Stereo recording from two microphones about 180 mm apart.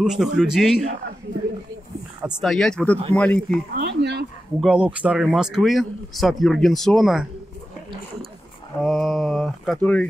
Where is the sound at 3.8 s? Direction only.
70° right (ahead or behind).